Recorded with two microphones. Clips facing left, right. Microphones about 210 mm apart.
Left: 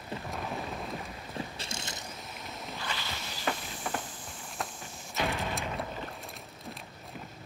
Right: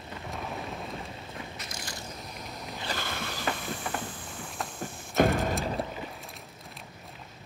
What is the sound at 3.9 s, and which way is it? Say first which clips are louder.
Boat: left 1 dB; centre (ahead or behind).